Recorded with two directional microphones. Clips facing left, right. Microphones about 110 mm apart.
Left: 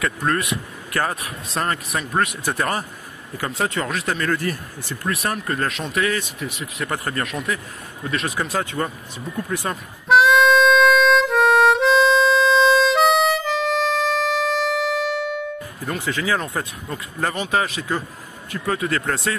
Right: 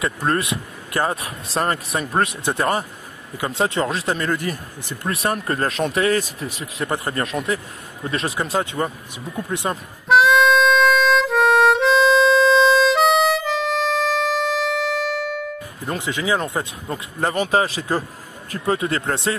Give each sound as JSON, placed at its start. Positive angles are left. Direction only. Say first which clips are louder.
{"t": 0.0, "sound": "speech", "louder": "right 1 dB", "side_deg": -30}
{"t": 10.0, "sound": "harmonica", "louder": "even", "side_deg": 0}
{"t": 16.0, "sound": "speech", "louder": "right 1 dB", "side_deg": -15}